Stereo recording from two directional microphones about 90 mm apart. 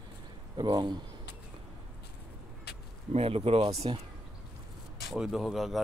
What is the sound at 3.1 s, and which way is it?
Speech, 90° right.